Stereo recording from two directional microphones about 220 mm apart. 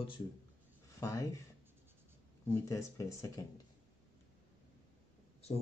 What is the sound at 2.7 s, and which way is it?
Speech, 15° left (ahead or behind).